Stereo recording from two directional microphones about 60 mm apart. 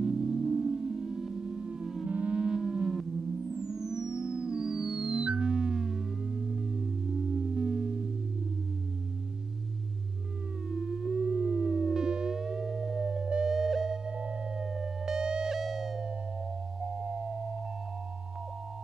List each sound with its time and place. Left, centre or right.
0.0 s music: centre
7.3 s chirp tone: centre
10.7 s theremin: centre
14.1 s music: centre
14.6 s music: centre